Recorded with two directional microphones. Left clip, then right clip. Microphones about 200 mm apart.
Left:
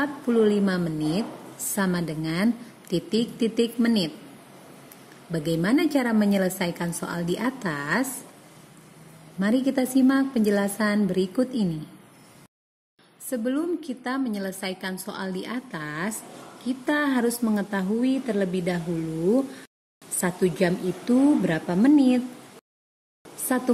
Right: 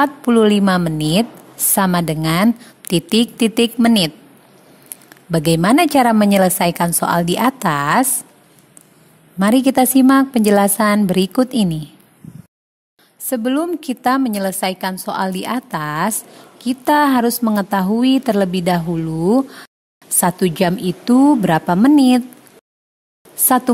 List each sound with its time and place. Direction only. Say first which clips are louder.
0.0 s a woman's voice: right 9 dB; 50° right (ahead or behind)
5.3 s a woman's voice: right 10 dB; 50° right (ahead or behind)
9.4 s a woman's voice: right 11 dB; 50° right (ahead or behind)
13.3 s a woman's voice: right 8 dB; 45° right (ahead or behind)
20.2 s a woman's voice: right 8 dB; 45° right (ahead or behind)